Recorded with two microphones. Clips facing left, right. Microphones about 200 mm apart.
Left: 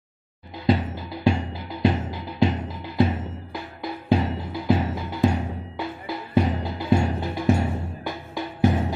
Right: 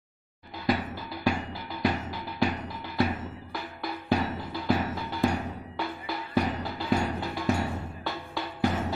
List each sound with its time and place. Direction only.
0.7 s music: 25° left (ahead or behind)